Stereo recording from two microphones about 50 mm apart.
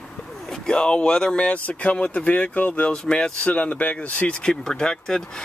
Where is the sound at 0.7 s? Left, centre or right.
Centre.